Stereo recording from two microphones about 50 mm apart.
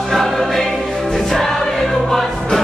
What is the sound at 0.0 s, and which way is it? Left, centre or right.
Music, centre.